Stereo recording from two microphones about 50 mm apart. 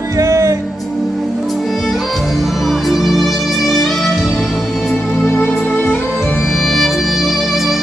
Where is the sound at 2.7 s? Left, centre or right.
Centre.